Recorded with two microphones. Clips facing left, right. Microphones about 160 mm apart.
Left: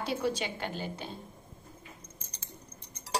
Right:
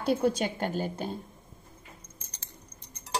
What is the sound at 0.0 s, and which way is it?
A woman's voice, 50° right (ahead or behind).